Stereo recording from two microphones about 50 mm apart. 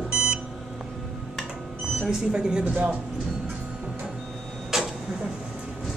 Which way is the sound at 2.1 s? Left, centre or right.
Centre.